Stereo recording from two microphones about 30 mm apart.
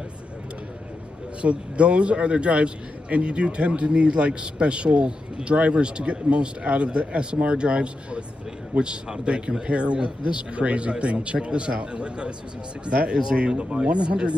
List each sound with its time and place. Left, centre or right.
1.4 s a man's voice: right